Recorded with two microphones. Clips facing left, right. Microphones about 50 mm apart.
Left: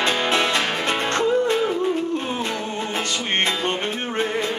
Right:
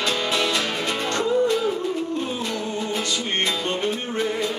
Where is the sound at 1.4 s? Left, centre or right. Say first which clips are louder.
Left 1 dB; left.